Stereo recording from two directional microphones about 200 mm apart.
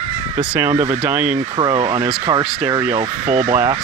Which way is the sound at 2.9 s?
40° right (ahead or behind).